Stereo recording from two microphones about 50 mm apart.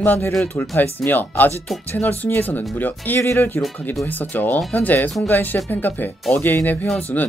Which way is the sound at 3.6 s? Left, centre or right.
Left.